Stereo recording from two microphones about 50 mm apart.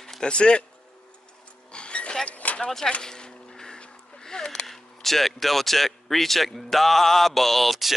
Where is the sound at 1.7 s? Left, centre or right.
Left.